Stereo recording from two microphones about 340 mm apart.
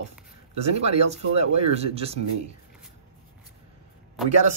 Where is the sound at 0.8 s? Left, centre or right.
Centre.